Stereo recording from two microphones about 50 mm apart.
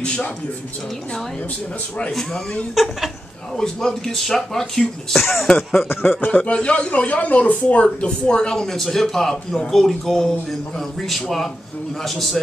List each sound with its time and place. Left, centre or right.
0.0 s speech: centre
2.7 s a man's voice: centre
3.5 s a man's voice: centre
5.9 s speech: left
6.3 s a man's voice: left; by 12.4 s centre